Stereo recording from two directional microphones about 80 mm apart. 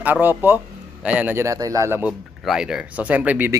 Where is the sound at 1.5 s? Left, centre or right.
Right.